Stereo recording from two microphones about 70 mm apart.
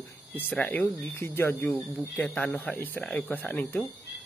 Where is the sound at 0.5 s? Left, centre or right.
Left.